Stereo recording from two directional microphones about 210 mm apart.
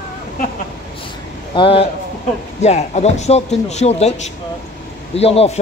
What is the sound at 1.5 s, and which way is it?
A man's voice, 25° left (ahead or behind).